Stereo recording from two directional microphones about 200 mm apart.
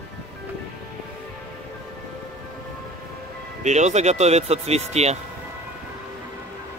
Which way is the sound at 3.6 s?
35° right (ahead or behind).